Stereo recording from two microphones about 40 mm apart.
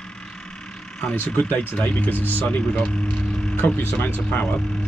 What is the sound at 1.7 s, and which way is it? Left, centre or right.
Speech, left.